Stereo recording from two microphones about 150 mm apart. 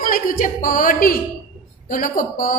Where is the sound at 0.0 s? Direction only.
70° left (ahead or behind).